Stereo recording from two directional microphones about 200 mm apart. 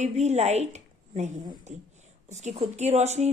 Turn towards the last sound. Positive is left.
turn(degrees=-35)  # may be behind; listen again after turning